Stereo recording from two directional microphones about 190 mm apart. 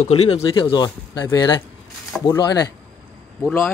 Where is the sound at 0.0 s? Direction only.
30° left (ahead or behind).